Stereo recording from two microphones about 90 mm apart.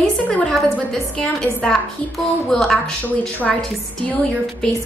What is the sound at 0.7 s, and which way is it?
A woman's voice, 15° left (ahead or behind).